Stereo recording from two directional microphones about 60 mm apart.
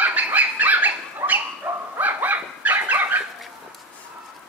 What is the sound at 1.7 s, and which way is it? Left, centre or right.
Dog, right.